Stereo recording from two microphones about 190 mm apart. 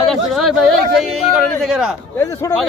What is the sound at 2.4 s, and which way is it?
Speech, 20° left (ahead or behind).